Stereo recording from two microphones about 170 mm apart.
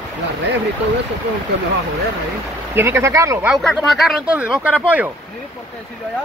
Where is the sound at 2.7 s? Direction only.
15° right (ahead or behind).